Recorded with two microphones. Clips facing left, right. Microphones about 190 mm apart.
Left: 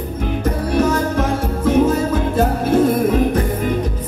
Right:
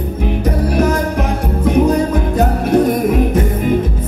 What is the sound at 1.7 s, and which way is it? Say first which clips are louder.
Music: right 2 dB; 15° right (ahead or behind).